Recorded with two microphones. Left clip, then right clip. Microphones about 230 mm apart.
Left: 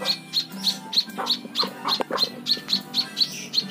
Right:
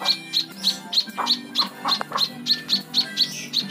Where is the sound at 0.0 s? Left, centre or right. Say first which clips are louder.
Right 3 dB; centre.